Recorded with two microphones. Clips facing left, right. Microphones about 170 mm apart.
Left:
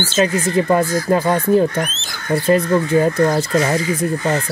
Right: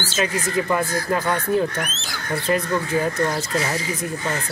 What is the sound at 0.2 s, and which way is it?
Speech, 35° left (ahead or behind).